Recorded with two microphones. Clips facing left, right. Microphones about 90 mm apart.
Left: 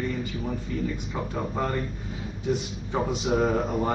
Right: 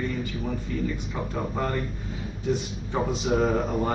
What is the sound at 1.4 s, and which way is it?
Speech, 5° left (ahead or behind).